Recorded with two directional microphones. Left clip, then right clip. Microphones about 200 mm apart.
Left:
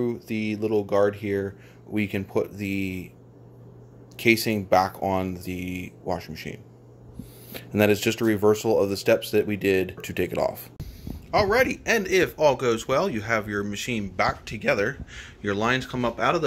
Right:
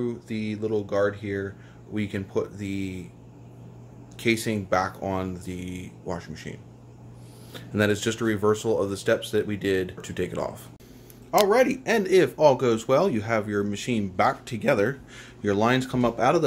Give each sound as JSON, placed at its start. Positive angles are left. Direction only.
{"t": 0.0, "sound": "speech", "side_deg": 30}
{"t": 4.2, "sound": "speech", "side_deg": 30}
{"t": 7.5, "sound": "speech", "side_deg": 30}
{"t": 11.2, "sound": "speech", "side_deg": 0}